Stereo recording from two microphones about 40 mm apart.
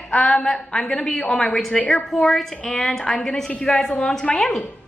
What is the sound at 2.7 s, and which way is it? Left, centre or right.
A woman's voice, centre.